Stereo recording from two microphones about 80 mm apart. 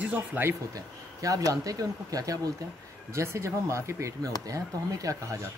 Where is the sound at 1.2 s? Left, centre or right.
Right.